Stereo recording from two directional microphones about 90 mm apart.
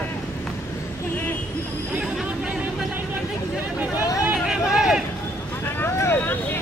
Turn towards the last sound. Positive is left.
turn(degrees=25)  # may be behind; listen again after turning